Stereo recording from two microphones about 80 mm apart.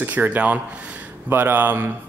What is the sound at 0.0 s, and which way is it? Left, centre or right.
Speech, right.